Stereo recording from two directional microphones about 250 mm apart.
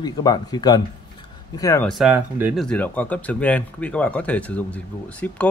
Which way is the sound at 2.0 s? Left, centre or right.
Centre.